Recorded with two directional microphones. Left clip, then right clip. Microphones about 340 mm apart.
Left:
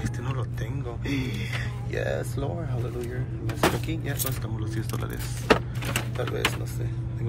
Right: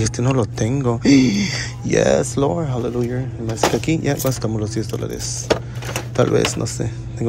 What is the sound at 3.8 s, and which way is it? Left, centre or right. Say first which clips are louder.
Speech: right 13 dB; centre.